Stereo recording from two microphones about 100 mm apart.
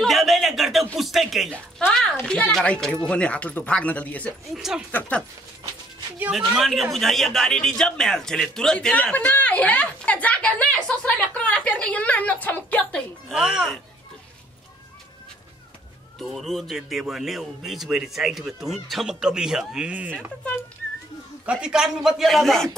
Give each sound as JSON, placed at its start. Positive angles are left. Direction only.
{"t": 0.0, "sound": "a sound", "side_deg": 0}
{"t": 0.9, "sound": "a man's voice", "side_deg": 0}
{"t": 4.6, "sound": "a man's voice", "side_deg": -5}
{"t": 4.9, "sound": "speech", "side_deg": 20}
{"t": 6.3, "sound": "a man's voice", "side_deg": 0}
{"t": 13.3, "sound": "a man's voice", "side_deg": -5}
{"t": 16.2, "sound": "a man's voice", "side_deg": 0}
{"t": 21.5, "sound": "a man's voice", "side_deg": -10}